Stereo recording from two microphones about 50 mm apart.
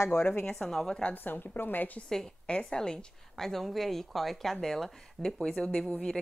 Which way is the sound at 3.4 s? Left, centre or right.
Centre.